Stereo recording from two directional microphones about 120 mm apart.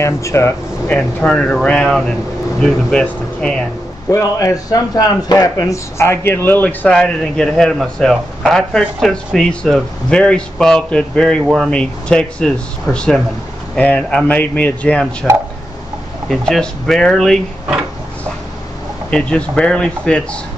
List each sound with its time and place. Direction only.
0.0 s a man's voice: 25° left (ahead or behind)
0.8 s speech: 10° left (ahead or behind)
4.1 s a man's voice: 25° left (ahead or behind); by 15.0 s 10° left (ahead or behind)
16.3 s a man's voice: 5° left (ahead or behind)
19.0 s speech: 10° left (ahead or behind)